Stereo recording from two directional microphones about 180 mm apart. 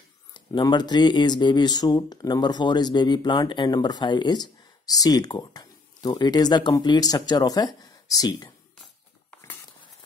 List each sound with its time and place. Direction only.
0.3 s speech: 25° left (ahead or behind)